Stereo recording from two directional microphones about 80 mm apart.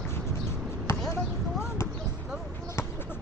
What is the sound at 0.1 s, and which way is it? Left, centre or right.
Basketball bounce, left.